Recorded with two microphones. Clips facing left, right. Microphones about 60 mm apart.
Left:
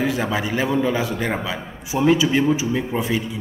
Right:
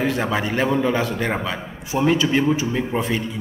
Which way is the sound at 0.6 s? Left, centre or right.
Centre.